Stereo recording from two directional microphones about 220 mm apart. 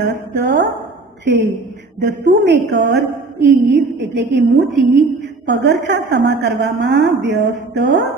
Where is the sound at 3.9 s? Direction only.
50° right (ahead or behind).